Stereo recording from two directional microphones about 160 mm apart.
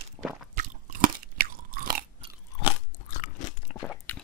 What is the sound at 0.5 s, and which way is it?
Crunch, 55° right (ahead or behind).